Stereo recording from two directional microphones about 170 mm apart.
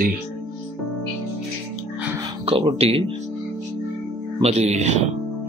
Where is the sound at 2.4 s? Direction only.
35° right (ahead or behind).